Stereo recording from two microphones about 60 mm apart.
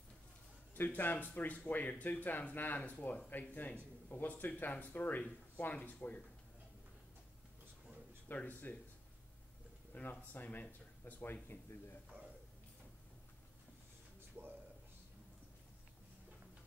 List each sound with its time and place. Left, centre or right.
0.7 s speech: left
8.3 s speech: left
9.9 s speech: left